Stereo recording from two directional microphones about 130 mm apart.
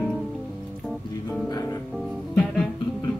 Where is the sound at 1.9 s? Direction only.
5° left (ahead or behind).